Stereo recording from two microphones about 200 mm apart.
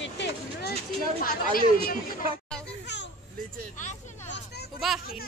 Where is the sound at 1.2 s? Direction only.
45° left (ahead or behind).